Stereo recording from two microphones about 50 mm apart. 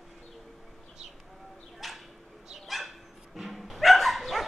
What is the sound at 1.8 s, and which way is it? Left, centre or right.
Bird, centre.